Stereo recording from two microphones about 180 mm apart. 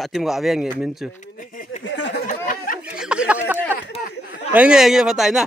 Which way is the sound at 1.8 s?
80° left.